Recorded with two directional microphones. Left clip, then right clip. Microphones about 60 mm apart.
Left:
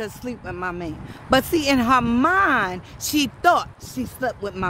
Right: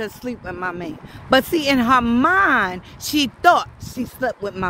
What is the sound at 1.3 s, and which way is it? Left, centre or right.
Speech, right.